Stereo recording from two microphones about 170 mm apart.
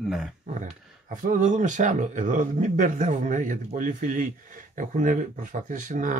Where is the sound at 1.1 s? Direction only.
50° right (ahead or behind).